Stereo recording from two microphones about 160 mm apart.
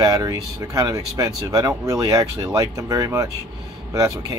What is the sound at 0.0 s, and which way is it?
Speech, 20° right (ahead or behind).